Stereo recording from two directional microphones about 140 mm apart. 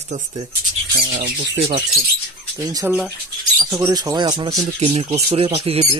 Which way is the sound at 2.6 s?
25° right (ahead or behind).